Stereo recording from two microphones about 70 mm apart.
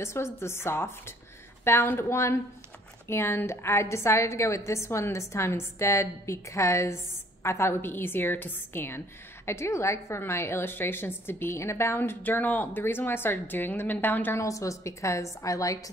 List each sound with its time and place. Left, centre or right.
0.0 s a woman's voice: left
14.4 s a woman's voice: left